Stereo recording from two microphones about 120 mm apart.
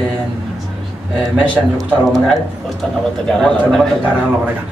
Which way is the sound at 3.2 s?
5° left (ahead or behind).